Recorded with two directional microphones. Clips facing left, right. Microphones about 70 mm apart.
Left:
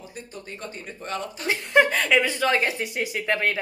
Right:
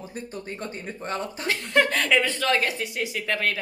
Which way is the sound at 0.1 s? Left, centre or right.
Right.